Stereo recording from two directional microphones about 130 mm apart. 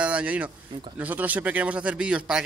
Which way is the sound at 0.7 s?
40° right (ahead or behind).